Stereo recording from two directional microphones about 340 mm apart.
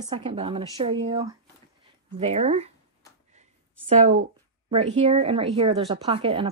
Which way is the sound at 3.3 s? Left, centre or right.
Centre.